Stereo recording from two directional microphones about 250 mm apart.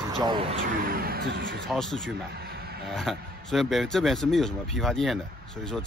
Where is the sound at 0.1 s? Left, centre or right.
Centre.